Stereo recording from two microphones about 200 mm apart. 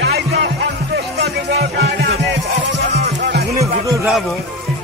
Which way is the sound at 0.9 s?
55° right (ahead or behind).